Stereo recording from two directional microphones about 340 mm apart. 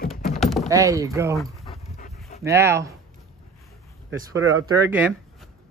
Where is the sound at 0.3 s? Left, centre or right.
Centre.